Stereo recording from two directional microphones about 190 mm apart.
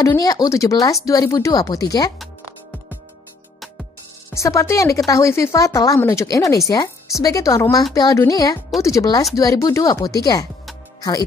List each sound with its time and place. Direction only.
0.0 s speech: 20° left (ahead or behind)
4.3 s speech: 15° left (ahead or behind)